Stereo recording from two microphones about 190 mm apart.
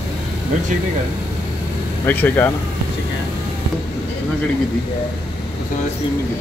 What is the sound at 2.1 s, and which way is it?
Speech, 10° left (ahead or behind).